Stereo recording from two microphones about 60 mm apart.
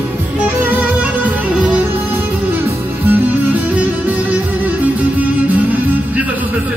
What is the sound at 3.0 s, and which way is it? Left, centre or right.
Music, right.